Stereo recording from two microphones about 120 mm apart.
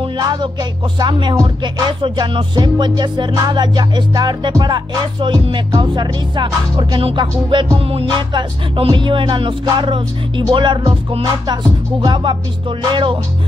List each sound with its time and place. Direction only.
0.2 s music: 35° right (ahead or behind)